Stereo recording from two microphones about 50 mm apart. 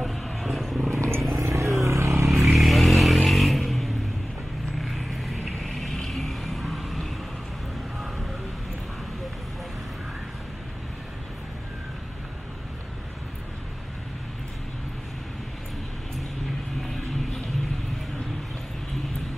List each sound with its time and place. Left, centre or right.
0.0 s roaring cats: centre
0.9 s vehicle: right
1.4 s vehicle: right
2.2 s vehicle: centre